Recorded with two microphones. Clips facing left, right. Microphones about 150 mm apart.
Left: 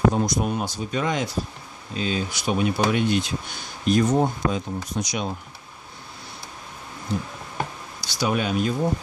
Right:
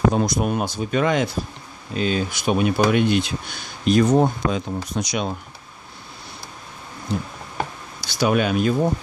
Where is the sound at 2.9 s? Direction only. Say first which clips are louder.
Right 3 dB; 65° right (ahead or behind).